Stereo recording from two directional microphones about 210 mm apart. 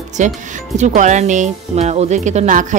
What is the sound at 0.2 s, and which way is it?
Speech, 35° right (ahead or behind).